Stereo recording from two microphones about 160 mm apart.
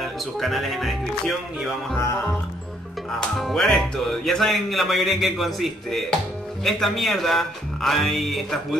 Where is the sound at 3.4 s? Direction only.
Centre (ahead or behind).